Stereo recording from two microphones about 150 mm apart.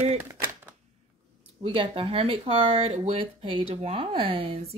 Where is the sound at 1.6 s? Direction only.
40° right (ahead or behind).